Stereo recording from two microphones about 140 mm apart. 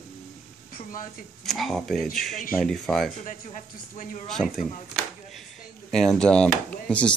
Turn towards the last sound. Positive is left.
turn(degrees=10)  # may be behind; listen again after turning